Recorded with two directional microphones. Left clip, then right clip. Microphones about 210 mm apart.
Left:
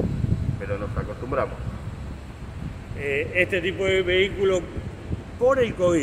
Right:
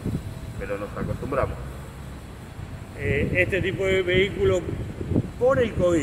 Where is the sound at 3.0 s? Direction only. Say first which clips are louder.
Even; 10° left (ahead or behind).